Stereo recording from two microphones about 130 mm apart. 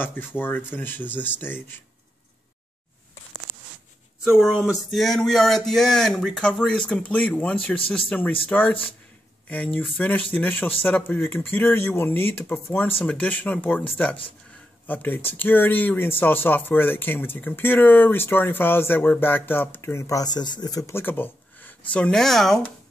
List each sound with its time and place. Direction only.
0.0 s speech: 15° left (ahead or behind)
4.4 s speech: 5° right (ahead or behind)